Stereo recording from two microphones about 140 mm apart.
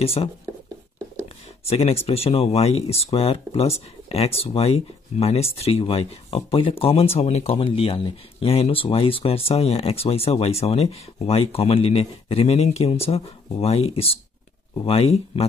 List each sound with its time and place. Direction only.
0.0 s speech: 45° left (ahead or behind)
1.7 s speech: 45° left (ahead or behind)